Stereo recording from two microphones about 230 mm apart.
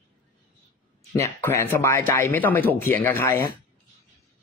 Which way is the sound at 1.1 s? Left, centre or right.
Centre.